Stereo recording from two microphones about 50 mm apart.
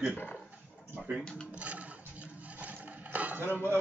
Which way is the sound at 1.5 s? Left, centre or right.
Right.